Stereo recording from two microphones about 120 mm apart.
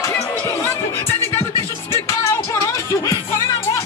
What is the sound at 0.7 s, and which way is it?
Music, 20° left (ahead or behind).